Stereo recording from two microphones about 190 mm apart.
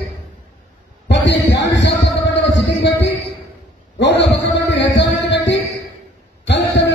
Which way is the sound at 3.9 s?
65° left (ahead or behind).